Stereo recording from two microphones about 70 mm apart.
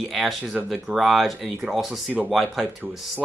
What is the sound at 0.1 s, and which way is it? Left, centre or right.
Speech, centre.